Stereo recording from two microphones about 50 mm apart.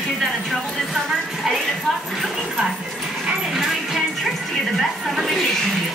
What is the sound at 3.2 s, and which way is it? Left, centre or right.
Dog, centre.